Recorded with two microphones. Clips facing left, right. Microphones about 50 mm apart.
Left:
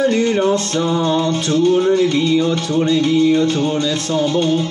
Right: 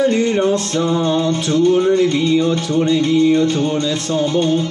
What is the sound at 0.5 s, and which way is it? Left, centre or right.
Music, centre.